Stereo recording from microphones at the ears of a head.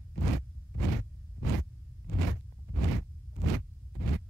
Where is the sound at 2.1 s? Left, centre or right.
Right.